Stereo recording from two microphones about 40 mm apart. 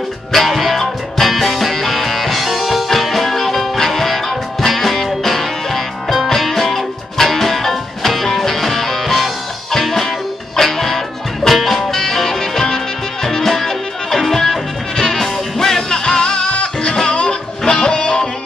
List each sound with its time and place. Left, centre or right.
0.3 s music: centre; by 18.3 s left